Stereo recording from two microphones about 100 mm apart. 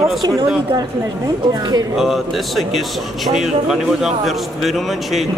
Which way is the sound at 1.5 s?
40° right (ahead or behind).